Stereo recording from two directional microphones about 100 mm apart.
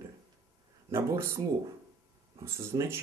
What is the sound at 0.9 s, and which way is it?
Speech, 30° right (ahead or behind).